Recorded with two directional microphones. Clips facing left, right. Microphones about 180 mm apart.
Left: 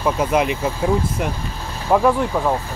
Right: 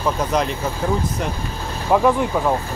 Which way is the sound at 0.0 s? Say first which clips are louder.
Left 2 dB; 10° left (ahead or behind).